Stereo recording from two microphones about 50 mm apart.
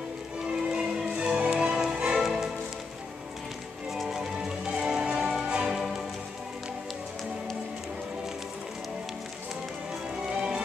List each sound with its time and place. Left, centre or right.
0.5 s music: centre
3.9 s music: centre